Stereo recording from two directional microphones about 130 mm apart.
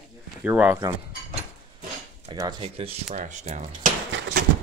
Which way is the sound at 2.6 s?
50° right (ahead or behind).